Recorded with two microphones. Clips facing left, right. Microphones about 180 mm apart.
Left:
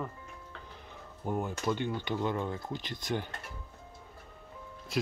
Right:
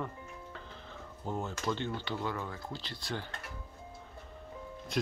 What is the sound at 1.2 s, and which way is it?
Speech, 10° left (ahead or behind).